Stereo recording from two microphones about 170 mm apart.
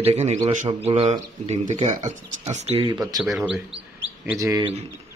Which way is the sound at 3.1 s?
Centre (ahead or behind).